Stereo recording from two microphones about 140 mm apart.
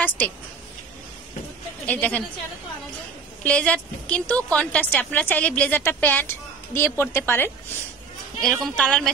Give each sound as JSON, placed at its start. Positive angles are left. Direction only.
{"t": 1.9, "sound": "a woman's voice", "side_deg": 10}
{"t": 3.4, "sound": "a woman's voice", "side_deg": 10}
{"t": 8.4, "sound": "speech", "side_deg": 5}